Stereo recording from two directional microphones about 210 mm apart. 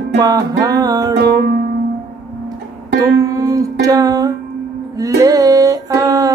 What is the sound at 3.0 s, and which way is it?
Music, 15° right (ahead or behind).